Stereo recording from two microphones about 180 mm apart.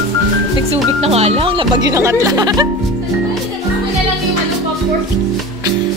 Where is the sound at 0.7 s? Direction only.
35° right (ahead or behind).